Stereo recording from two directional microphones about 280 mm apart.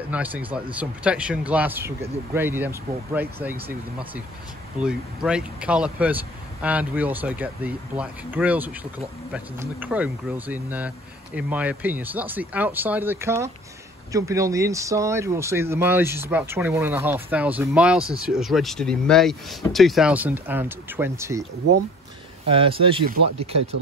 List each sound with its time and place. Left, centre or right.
0.1 s speech: centre
4.7 s speech: centre
22.5 s speech: centre